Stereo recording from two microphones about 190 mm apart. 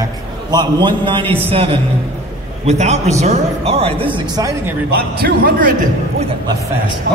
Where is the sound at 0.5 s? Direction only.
25° right (ahead or behind).